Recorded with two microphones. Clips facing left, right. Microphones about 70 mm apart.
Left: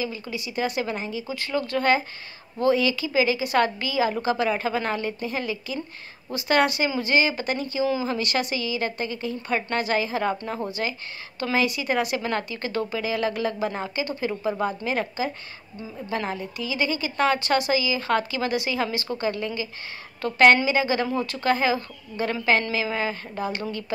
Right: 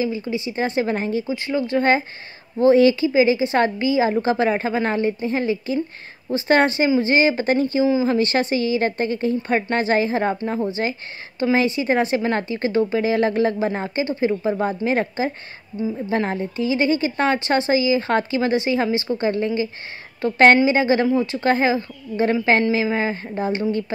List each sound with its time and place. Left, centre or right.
0.3 s speech: right
1.3 s a woman's voice: right
7.8 s a woman's voice: right